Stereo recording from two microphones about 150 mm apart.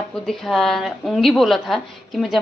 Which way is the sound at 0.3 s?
Centre (ahead or behind).